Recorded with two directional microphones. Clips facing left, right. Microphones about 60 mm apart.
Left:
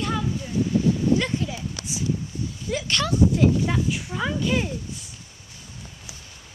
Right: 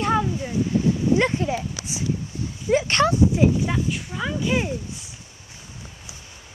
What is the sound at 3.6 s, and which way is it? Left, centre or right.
Speech, centre.